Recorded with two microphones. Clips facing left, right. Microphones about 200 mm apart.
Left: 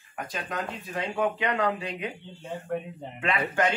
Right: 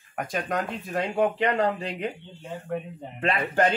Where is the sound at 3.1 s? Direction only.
35° right (ahead or behind).